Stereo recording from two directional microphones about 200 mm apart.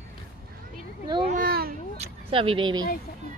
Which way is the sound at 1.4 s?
50° right (ahead or behind).